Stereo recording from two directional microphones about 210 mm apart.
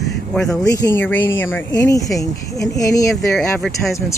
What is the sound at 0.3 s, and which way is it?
Speech, 5° left (ahead or behind).